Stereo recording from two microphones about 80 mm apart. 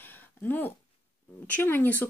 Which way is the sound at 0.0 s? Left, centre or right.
Left.